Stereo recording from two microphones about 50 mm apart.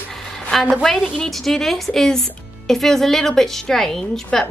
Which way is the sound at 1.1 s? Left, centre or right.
Centre.